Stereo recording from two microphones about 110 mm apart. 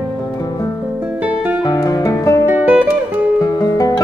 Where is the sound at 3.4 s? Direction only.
35° left (ahead or behind).